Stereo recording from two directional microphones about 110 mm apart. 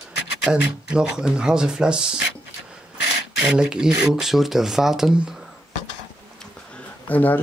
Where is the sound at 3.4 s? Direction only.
5° right (ahead or behind).